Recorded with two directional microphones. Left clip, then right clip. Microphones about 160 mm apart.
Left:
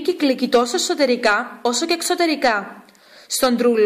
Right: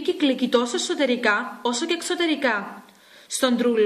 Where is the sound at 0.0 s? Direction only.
30° left (ahead or behind).